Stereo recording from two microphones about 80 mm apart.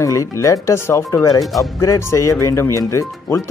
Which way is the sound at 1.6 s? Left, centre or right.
Left.